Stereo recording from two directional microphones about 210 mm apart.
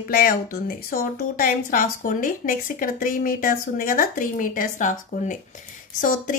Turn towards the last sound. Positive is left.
turn(degrees=40)  # may be behind; listen again after turning